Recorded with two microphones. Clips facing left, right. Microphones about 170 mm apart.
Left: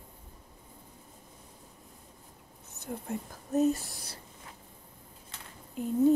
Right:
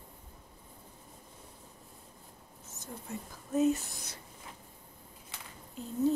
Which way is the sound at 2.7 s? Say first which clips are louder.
Left 6 dB; 60° left (ahead or behind).